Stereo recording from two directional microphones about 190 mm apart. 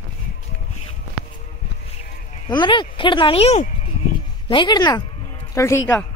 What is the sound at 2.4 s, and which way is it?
Speech, 25° left (ahead or behind).